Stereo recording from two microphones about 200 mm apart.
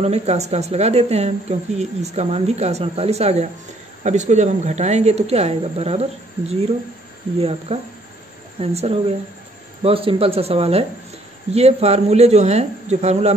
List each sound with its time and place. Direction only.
0.0 s speech: 30° right (ahead or behind)
7.3 s speech: 30° right (ahead or behind)